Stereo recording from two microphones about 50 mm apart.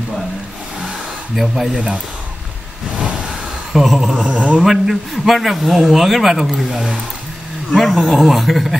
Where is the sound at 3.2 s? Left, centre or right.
Centre.